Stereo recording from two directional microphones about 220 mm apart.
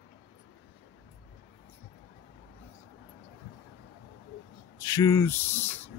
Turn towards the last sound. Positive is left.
turn(degrees=10)  # may be behind; listen again after turning